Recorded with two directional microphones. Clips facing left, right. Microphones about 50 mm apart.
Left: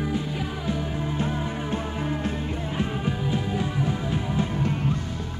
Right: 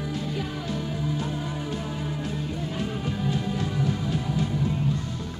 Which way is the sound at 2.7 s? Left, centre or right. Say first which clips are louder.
Left 4 dB; left.